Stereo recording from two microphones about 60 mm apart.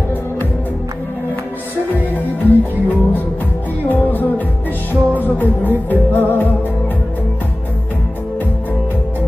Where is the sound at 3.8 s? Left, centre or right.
Left.